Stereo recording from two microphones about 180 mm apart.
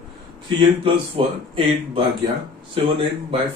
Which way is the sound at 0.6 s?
30° right (ahead or behind).